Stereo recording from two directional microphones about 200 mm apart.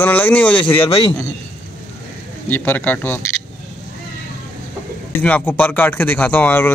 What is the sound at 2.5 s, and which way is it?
Speech, 10° left (ahead or behind).